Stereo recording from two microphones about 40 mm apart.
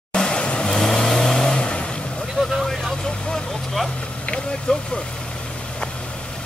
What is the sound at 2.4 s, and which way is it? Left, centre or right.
Vehicle, centre.